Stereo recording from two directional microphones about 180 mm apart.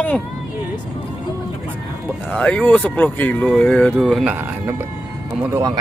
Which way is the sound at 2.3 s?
5° left (ahead or behind).